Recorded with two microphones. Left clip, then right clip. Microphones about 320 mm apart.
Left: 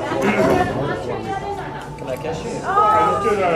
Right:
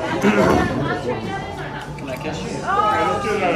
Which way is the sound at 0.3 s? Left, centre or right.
Centre.